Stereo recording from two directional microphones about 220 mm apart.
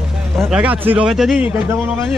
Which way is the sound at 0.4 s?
5° right (ahead or behind).